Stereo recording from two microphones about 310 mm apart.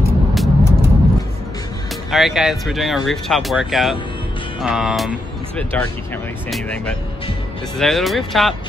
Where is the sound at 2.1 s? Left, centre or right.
Centre.